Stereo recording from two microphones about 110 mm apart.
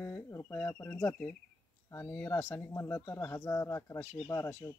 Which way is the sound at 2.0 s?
20° left (ahead or behind).